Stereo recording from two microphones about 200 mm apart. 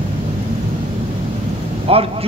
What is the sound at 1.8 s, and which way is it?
Speech, 30° right (ahead or behind).